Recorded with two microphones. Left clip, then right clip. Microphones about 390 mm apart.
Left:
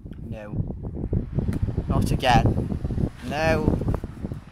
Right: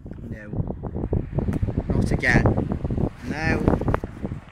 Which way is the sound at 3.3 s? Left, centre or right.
Centre.